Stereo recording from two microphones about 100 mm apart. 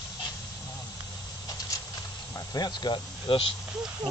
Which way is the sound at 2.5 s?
45° left (ahead or behind).